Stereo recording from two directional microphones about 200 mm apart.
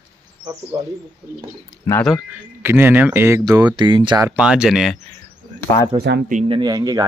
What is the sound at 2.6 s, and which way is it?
Speech, 10° right (ahead or behind).